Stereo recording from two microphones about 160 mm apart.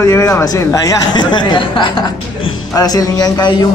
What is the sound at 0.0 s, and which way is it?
A man's voice, 20° left (ahead or behind).